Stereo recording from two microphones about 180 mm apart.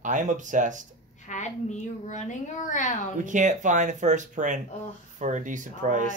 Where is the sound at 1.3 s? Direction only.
40° left (ahead or behind).